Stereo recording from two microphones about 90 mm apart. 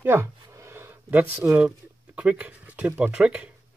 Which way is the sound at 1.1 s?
15° right (ahead or behind).